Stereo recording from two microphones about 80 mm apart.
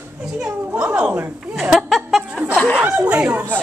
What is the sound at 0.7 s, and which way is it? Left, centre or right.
Cat, centre.